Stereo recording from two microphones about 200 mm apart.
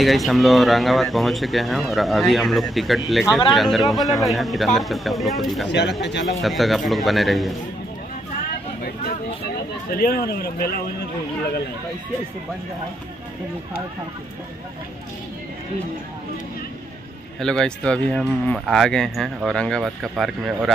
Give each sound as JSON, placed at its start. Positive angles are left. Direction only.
{"t": 0.0, "sound": "speech", "side_deg": 0}
{"t": 5.7, "sound": "speech", "side_deg": 60}
{"t": 6.2, "sound": "speech", "side_deg": 0}
{"t": 9.9, "sound": "speech", "side_deg": 50}
{"t": 17.4, "sound": "speech", "side_deg": 5}